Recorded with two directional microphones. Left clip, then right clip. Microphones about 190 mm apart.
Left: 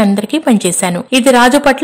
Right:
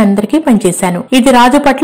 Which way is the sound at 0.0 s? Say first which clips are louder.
Right 2 dB; 35° left (ahead or behind).